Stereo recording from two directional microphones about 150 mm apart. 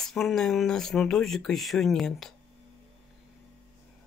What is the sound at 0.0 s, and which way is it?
Speech, centre (ahead or behind).